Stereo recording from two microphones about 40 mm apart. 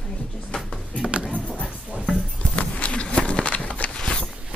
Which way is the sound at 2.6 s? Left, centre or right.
Left.